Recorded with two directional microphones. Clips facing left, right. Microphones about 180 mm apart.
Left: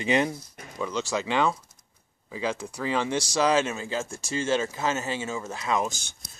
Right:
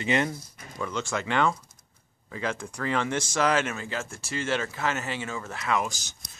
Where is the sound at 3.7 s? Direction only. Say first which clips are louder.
Left 3 dB; 25° left (ahead or behind).